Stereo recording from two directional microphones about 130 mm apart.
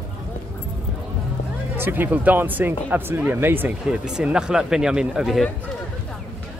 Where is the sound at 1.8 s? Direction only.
15° right (ahead or behind).